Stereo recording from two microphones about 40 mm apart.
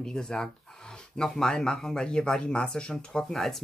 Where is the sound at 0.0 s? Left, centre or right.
Centre.